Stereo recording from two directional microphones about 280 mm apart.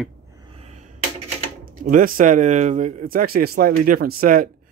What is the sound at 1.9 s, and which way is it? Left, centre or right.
Speech, right.